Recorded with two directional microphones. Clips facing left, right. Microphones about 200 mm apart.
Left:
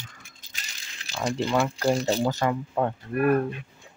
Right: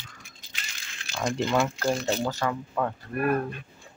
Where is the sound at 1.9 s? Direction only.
35° left (ahead or behind).